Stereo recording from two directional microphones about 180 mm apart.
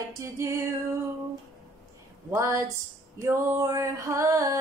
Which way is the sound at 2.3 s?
15° right (ahead or behind).